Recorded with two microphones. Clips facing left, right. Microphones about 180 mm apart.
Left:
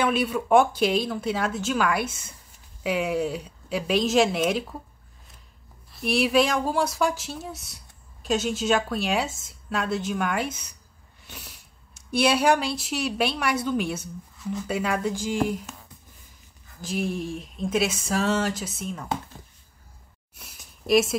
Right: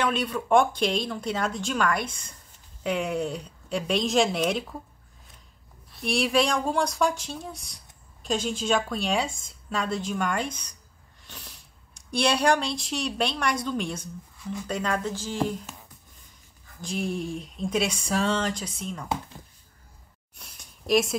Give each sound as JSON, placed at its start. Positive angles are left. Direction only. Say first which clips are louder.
{"t": 0.0, "sound": "speech", "louder": "left 3 dB", "side_deg": 10}
{"t": 5.9, "sound": "speech", "louder": "left 3 dB", "side_deg": 0}
{"t": 16.8, "sound": "speech", "louder": "left 1 dB", "side_deg": 0}
{"t": 20.3, "sound": "a sound", "louder": "left 1 dB", "side_deg": 5}